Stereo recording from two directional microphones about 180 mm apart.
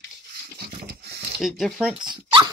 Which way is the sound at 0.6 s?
60° right (ahead or behind).